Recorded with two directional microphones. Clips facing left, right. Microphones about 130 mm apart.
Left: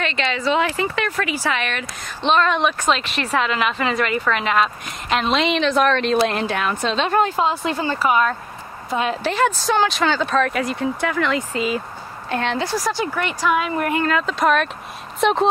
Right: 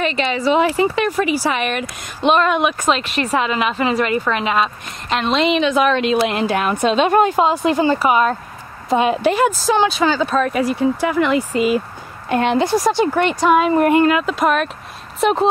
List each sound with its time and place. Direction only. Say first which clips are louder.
0.0 s a woman's voice: right 4 dB; 10° right (ahead or behind)
14.0 s speech: right 3 dB; 5° right (ahead or behind)